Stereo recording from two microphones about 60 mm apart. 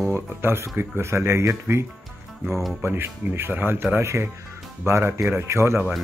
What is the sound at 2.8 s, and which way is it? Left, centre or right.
Speech, right.